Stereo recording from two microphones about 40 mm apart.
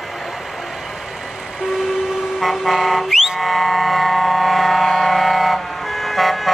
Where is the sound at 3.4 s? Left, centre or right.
Centre.